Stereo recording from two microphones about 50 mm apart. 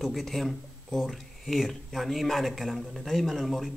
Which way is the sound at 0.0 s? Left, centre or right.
Centre.